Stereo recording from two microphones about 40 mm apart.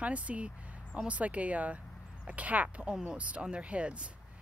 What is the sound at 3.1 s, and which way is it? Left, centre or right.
Speech, right.